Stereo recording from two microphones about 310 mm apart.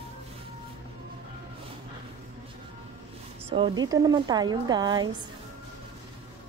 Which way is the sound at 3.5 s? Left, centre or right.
Centre.